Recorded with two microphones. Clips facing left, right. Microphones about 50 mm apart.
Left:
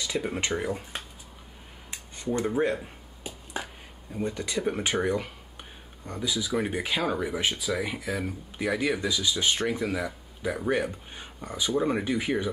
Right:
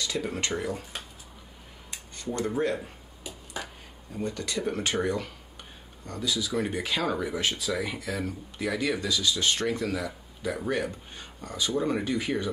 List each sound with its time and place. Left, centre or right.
0.0 s speech: centre
2.3 s speech: centre
3.3 s finger snapping: left
4.1 s speech: centre